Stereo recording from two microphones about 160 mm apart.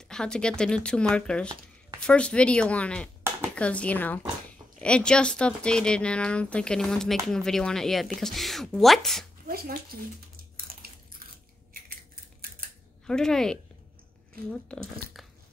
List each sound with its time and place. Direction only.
0.1 s speech: 5° left (ahead or behind)
9.5 s squish: 65° right (ahead or behind)
11.7 s typing: 65° right (ahead or behind)
13.0 s speech: 5° left (ahead or behind)